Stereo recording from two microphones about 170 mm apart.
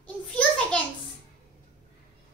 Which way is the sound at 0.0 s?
5° left (ahead or behind).